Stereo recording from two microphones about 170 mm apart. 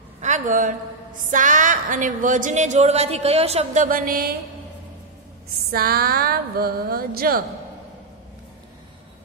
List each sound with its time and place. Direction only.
0.2 s a sound: 45° right (ahead or behind)
1.3 s a woman's voice: 50° right (ahead or behind)
5.7 s speech: 60° right (ahead or behind)